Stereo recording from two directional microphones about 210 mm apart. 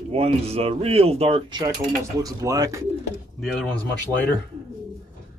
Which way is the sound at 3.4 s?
Centre (ahead or behind).